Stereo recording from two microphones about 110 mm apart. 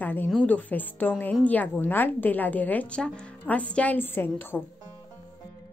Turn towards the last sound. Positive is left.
turn(degrees=20)  # may be behind; listen again after turning